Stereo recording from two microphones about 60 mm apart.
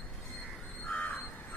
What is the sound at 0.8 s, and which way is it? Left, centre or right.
Crow, left.